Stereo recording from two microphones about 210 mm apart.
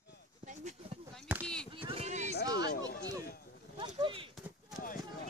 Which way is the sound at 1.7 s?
25° right (ahead or behind).